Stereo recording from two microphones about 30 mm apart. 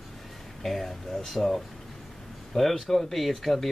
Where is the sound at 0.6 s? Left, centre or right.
Centre.